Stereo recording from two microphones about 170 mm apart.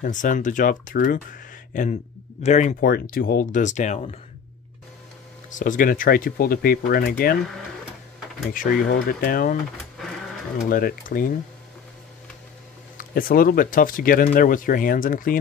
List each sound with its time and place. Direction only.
0.0 s speech: 50° left (ahead or behind)
2.8 s speech: 60° left (ahead or behind); by 4.2 s 40° left (ahead or behind)
5.5 s speech: 50° left (ahead or behind)
8.5 s speech: 55° left (ahead or behind)
10.7 s speech: 60° left (ahead or behind)
12.9 s speech: 60° left (ahead or behind)